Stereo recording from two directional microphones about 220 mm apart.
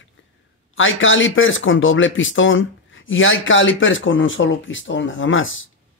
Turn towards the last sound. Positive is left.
turn(degrees=60)  # may be behind; listen again after turning